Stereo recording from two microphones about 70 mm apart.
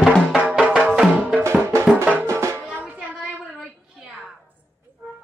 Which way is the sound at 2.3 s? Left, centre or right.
Right.